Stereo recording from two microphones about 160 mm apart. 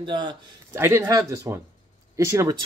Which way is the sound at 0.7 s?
15° right (ahead or behind).